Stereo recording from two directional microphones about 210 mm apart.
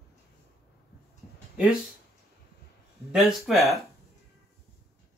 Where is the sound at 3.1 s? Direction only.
Centre (ahead or behind).